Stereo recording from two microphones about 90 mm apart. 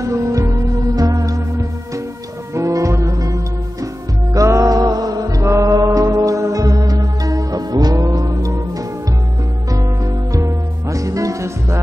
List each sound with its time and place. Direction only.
0.0 s music: 35° right (ahead or behind)
10.3 s music: 40° right (ahead or behind)